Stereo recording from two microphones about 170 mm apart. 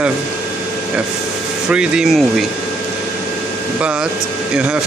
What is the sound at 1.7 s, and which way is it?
Speech, 5° right (ahead or behind).